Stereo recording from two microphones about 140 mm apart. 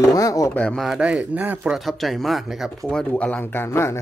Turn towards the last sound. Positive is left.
turn(degrees=20)  # may be behind; listen again after turning